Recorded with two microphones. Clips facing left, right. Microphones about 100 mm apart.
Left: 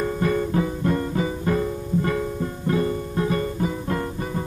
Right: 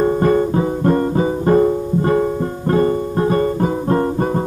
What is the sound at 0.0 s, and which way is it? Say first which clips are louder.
Music: right 8 dB; 40° right (ahead or behind).